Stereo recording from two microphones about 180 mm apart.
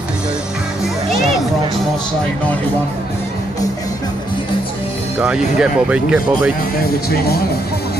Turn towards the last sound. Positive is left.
turn(degrees=60)  # may be behind; listen again after turning